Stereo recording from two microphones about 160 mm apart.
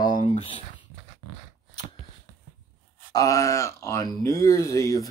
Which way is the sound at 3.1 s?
20° left (ahead or behind).